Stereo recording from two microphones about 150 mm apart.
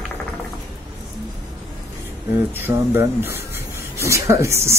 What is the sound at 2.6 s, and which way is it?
Speech, 15° right (ahead or behind).